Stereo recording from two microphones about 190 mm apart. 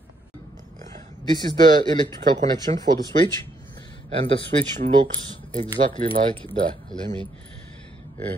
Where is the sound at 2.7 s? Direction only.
40° right (ahead or behind).